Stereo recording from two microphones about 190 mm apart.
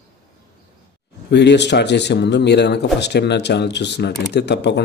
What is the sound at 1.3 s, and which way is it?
Speech, 65° left (ahead or behind).